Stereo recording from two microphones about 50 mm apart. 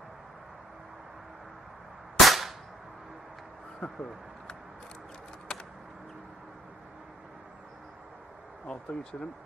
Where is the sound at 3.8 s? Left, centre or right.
Left.